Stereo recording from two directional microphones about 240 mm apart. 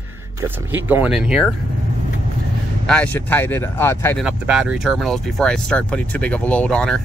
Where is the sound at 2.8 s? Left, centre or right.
Centre.